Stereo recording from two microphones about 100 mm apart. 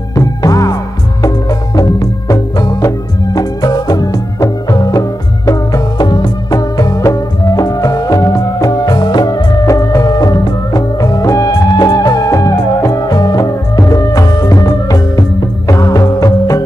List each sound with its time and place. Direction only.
0.1 s music: 35° left (ahead or behind)